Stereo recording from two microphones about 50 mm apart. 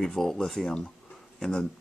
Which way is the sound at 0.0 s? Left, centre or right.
Centre.